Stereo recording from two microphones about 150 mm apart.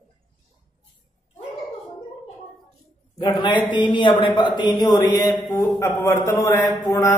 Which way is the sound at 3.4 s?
30° left (ahead or behind).